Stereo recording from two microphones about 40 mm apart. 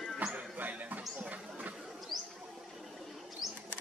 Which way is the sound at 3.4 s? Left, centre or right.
Centre.